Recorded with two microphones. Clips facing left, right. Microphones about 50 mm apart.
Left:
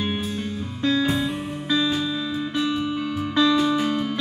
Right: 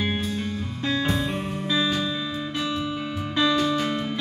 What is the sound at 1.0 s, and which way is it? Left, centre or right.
Music, centre.